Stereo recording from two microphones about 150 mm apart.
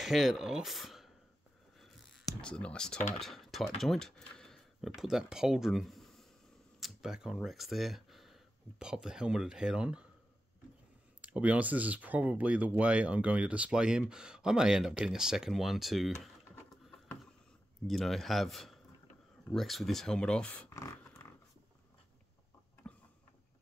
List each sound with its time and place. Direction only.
0.0 s speech: centre (ahead or behind)
2.4 s speech: 5° left (ahead or behind)
11.1 s speech: 10° right (ahead or behind)
17.8 s speech: centre (ahead or behind)
20.7 s a sound: 20° left (ahead or behind)